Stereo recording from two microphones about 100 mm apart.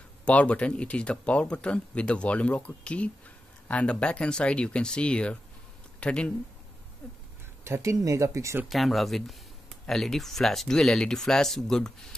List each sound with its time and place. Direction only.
0.2 s speech: 15° left (ahead or behind)
7.6 s speech: 30° right (ahead or behind)
8.6 s speech: centre (ahead or behind)